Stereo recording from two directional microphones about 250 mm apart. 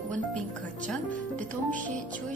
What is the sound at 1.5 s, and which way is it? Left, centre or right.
Music, centre.